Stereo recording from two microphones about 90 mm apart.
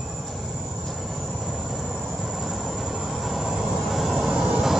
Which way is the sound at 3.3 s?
Centre (ahead or behind).